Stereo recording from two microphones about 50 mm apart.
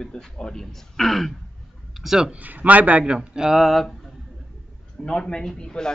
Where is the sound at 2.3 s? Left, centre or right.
Right.